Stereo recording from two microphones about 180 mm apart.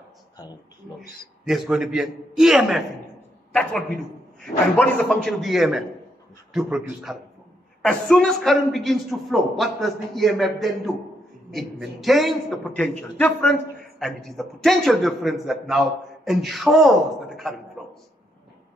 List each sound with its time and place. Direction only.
1.4 s a man's voice: centre (ahead or behind)
4.7 s a man's voice: 5° left (ahead or behind)
17.8 s a sound: centre (ahead or behind)